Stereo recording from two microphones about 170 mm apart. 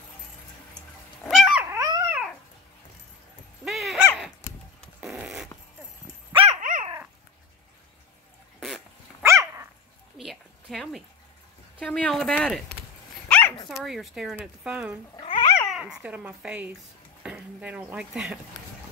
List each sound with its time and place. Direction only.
1.2 s dog: centre (ahead or behind)
1.8 s dog: 20° right (ahead or behind)
3.6 s dog: centre (ahead or behind)
5.0 s a sound: 5° right (ahead or behind)
6.3 s dog: 35° right (ahead or behind)
6.6 s dog: 50° right (ahead or behind)
8.5 s dog: centre (ahead or behind)
9.2 s dog: 15° right (ahead or behind)
10.1 s a sound: centre (ahead or behind)
11.8 s speech: 5° left (ahead or behind)
13.3 s dog: 10° left (ahead or behind)
13.8 s speech: centre (ahead or behind)
15.1 s cat: 35° left (ahead or behind)
15.6 s speech: centre (ahead or behind)